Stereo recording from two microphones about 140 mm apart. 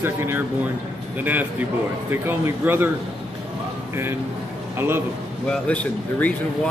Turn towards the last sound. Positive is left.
turn(degrees=10)  # may be behind; listen again after turning